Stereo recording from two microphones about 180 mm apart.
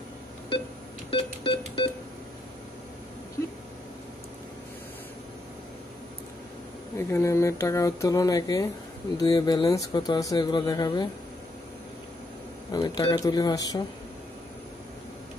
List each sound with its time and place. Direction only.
1.1 s music: 30° left (ahead or behind)
7.0 s speech: 15° left (ahead or behind)
12.7 s speech: 20° left (ahead or behind)